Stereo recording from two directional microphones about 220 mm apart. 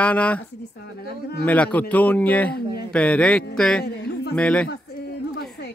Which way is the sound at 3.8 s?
50° left (ahead or behind).